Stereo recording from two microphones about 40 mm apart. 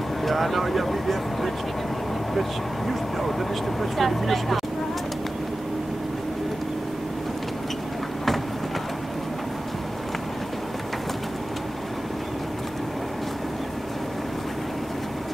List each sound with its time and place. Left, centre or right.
0.2 s speech: centre
2.9 s speech: centre